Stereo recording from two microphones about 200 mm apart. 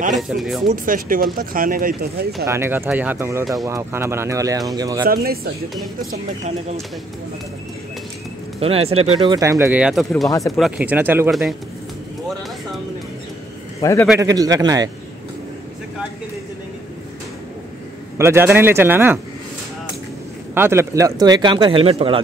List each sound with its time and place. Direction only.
0.1 s speech: centre (ahead or behind)
0.7 s speech: 45° right (ahead or behind)
2.4 s speech: 15° right (ahead or behind)
5.0 s speech: 50° right (ahead or behind)
6.4 s speech: 30° right (ahead or behind)
8.5 s speech: 30° right (ahead or behind)
9.3 s speech: 15° right (ahead or behind)
10.3 s speech: 15° left (ahead or behind)
10.6 s speech: 10° right (ahead or behind)
13.7 s a man's voice: 15° left (ahead or behind)
14.2 s speech: 15° right (ahead or behind)
18.1 s speech: 15° right (ahead or behind)
20.5 s speech: 10° right (ahead or behind); by 22.2 s 25° right (ahead or behind)